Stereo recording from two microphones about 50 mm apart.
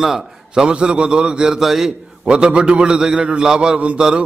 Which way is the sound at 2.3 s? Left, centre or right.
Centre.